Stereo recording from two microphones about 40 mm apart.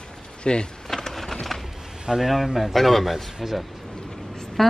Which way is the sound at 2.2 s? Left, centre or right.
Centre.